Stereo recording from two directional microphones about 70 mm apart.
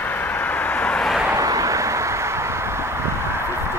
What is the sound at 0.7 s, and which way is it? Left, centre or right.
Vehicle, centre.